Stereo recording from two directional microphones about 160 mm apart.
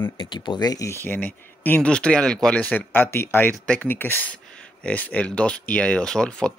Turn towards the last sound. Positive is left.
turn(degrees=5)  # may be behind; listen again after turning